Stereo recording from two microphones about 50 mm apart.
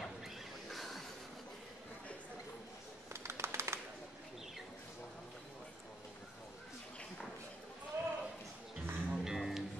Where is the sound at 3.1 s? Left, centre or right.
Right.